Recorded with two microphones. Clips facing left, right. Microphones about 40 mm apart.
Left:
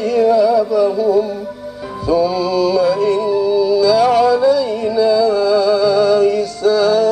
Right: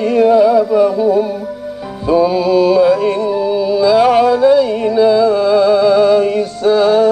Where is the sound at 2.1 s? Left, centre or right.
Right.